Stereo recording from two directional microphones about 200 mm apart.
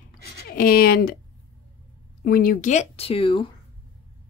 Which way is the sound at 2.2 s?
45° left (ahead or behind).